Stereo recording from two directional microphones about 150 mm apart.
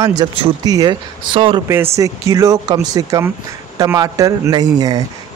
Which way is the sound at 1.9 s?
20° right (ahead or behind).